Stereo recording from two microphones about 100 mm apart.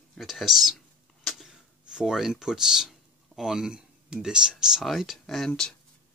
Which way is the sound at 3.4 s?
5° right (ahead or behind).